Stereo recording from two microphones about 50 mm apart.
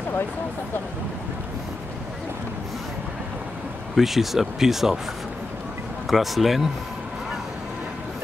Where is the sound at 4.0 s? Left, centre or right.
Centre.